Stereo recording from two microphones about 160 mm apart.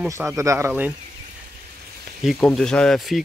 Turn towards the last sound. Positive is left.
turn(degrees=0)  # may be behind; listen again after turning